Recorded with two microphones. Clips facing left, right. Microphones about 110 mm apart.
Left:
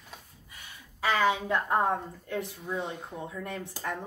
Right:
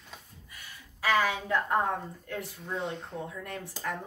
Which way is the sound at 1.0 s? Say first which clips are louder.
Left 1 dB; 25° left (ahead or behind).